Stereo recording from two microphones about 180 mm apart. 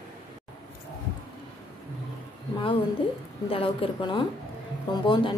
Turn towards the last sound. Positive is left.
turn(degrees=25)  # may be behind; listen again after turning